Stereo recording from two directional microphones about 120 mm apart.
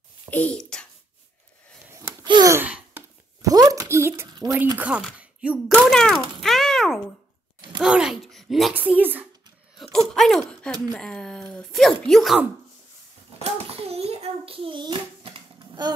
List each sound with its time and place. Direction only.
0.3 s a sound: 10° left (ahead or behind)
2.4 s gasp: 40° right (ahead or behind)
3.4 s a sound: 30° right (ahead or behind)
4.7 s speech: 10° right (ahead or behind)
5.9 s a sound: 5° left (ahead or behind)
7.8 s speech: 5° right (ahead or behind)
8.7 s speech: 15° right (ahead or behind)
9.9 s speech: centre (ahead or behind)
13.4 s a child's voice: 60° right (ahead or behind); by 15.9 s 40° right (ahead or behind)